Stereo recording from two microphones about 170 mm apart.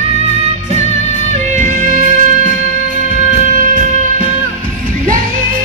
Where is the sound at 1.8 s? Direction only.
50° right (ahead or behind).